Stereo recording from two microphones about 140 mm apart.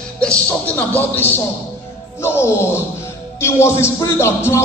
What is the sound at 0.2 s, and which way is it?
Speech, 10° left (ahead or behind).